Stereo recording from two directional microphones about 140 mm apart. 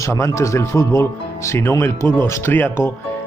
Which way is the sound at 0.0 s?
20° left (ahead or behind).